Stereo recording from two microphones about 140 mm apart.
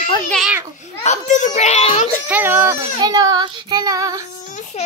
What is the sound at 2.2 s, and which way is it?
Speech, 15° right (ahead or behind).